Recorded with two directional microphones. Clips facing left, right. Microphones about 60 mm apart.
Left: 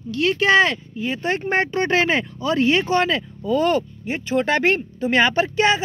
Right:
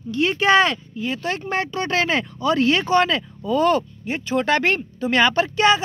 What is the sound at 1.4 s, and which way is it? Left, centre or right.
Speech, left.